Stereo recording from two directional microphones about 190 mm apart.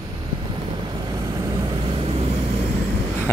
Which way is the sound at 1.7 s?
30° right (ahead or behind).